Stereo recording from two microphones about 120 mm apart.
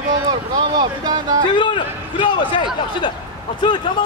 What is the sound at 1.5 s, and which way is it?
Speech, 45° left (ahead or behind).